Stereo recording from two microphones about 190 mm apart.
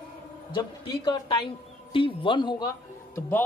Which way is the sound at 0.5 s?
25° left (ahead or behind).